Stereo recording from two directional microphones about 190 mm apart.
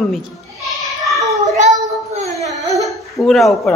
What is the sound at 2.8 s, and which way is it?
Laughter, centre (ahead or behind).